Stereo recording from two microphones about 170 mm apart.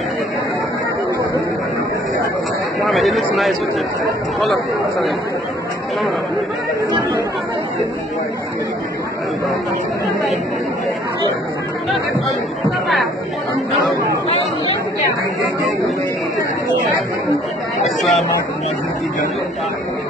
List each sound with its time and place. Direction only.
2.8 s speech: centre (ahead or behind)
12.8 s chatter: centre (ahead or behind)
17.8 s a sound: centre (ahead or behind)